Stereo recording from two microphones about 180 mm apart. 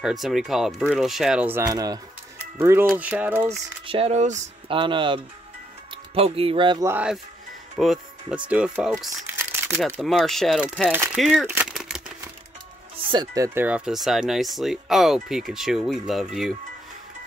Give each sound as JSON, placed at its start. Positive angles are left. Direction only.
{"t": 0.0, "sound": "speech", "side_deg": 0}
{"t": 3.8, "sound": "speech", "side_deg": -30}
{"t": 4.6, "sound": "speech", "side_deg": -30}
{"t": 6.9, "sound": "speech", "side_deg": -5}
{"t": 9.9, "sound": "speech", "side_deg": 0}
{"t": 11.4, "sound": "crumpling", "side_deg": -5}
{"t": 12.9, "sound": "speech", "side_deg": -25}